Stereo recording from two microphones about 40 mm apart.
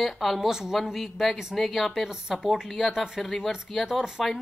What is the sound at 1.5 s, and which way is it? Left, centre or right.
Speech, centre.